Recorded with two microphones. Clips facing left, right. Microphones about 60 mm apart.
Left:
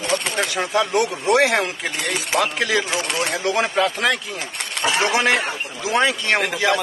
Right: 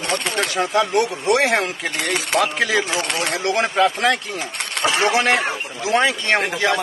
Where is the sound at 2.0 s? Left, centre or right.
Right.